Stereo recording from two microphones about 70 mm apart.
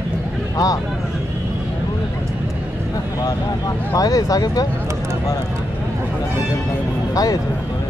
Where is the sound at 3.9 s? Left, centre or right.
Left.